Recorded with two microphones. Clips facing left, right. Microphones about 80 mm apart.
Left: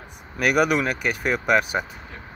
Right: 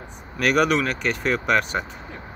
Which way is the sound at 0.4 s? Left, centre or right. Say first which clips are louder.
Even; centre.